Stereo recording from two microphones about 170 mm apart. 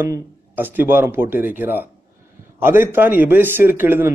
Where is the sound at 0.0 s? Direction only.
10° right (ahead or behind).